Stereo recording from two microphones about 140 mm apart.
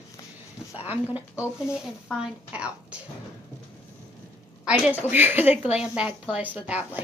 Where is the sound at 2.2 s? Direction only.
10° right (ahead or behind).